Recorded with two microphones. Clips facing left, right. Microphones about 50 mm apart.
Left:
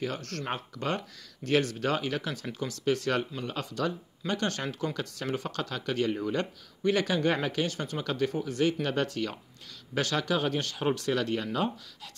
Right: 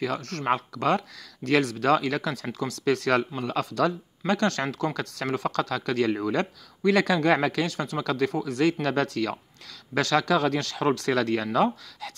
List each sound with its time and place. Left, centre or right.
0.2 s speech: right
0.5 s speech: right
1.8 s speech: right
4.3 s speech: right
8.0 s speech: right
8.8 s speech: right